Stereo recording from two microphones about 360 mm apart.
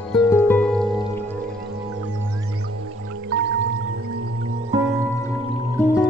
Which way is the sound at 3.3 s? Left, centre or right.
Right.